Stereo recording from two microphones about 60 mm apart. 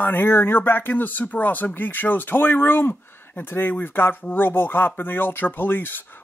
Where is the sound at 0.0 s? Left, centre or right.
Left.